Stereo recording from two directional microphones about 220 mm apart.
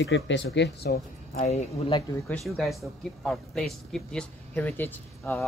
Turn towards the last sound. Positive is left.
turn(degrees=10)  # may be behind; listen again after turning